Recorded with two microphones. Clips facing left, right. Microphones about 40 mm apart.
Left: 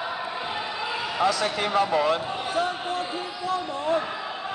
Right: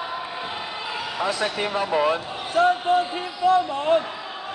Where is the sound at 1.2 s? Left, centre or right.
Right.